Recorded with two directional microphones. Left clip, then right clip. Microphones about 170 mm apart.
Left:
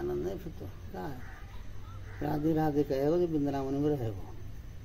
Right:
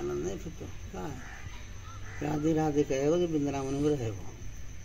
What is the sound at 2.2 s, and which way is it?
Speech, 20° left (ahead or behind).